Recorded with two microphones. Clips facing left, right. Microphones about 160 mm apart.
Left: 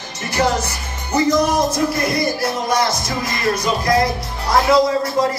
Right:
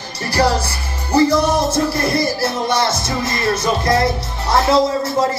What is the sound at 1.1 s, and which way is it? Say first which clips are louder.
Speech: right 2 dB; 30° right (ahead or behind).